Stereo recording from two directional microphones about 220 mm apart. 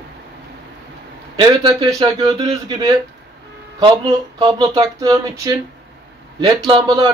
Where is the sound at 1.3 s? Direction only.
20° right (ahead or behind).